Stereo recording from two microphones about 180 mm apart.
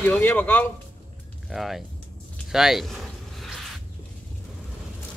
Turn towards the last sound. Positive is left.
turn(degrees=0)  # may be behind; listen again after turning